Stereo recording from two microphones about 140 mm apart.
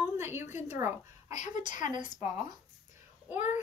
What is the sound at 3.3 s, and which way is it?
Speech, 10° right (ahead or behind).